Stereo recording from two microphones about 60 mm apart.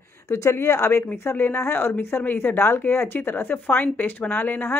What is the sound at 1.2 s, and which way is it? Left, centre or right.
Speech, left.